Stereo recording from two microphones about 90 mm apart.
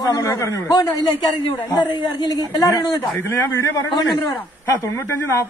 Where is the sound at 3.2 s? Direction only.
25° left (ahead or behind).